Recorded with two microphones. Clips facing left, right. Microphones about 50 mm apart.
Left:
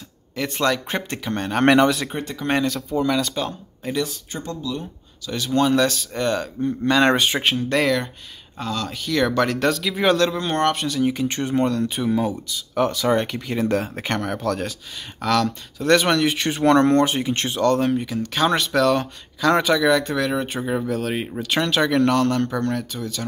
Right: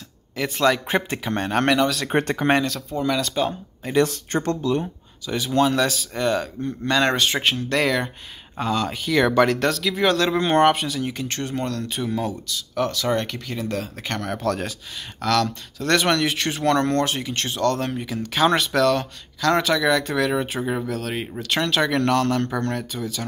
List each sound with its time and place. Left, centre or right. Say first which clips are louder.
0.4 s speech: right 2 dB; centre
2.1 s speech: right 8 dB; right
2.5 s speech: left 5 dB; centre
4.0 s speech: right 6 dB; right
5.2 s speech: right 1 dB; centre
5.5 s speech: left 1 dB; centre
8.5 s speech: right 3 dB; centre
13.6 s speech: left 7 dB; left
14.0 s speech: left 1 dB; centre
16.6 s speech: left 5 dB; centre